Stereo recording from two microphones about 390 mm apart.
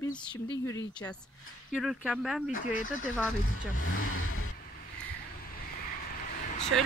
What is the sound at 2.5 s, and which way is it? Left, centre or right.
Speech, centre.